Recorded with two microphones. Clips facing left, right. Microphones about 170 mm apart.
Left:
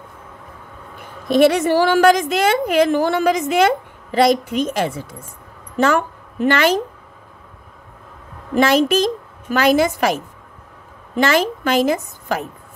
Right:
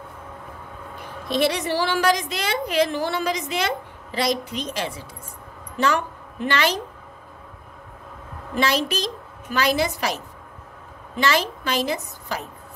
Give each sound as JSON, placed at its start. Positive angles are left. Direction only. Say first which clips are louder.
{"t": 1.3, "sound": "a woman's voice", "louder": "left 9 dB", "side_deg": 50}
{"t": 8.5, "sound": "a woman's voice", "louder": "left 8 dB", "side_deg": 50}